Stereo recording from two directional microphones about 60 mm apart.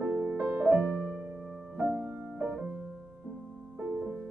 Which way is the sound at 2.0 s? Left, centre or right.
Centre.